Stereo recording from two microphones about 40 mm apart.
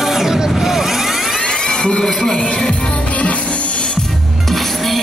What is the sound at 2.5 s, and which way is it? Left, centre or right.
Music, left.